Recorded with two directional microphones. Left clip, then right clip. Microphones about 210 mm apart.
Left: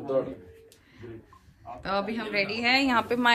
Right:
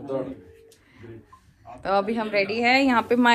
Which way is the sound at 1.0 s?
35° left (ahead or behind).